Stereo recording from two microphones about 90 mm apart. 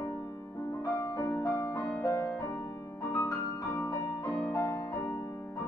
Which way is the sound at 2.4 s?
25° left (ahead or behind).